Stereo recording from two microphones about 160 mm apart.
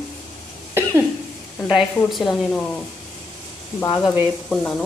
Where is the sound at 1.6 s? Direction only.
Centre (ahead or behind).